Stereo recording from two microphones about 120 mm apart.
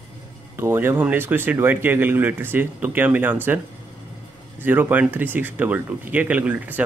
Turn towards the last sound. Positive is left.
turn(degrees=-15)  # may be behind; listen again after turning